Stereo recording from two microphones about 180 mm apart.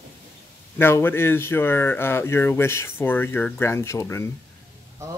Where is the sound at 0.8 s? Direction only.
10° left (ahead or behind).